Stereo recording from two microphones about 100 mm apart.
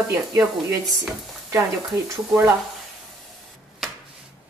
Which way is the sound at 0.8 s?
Centre (ahead or behind).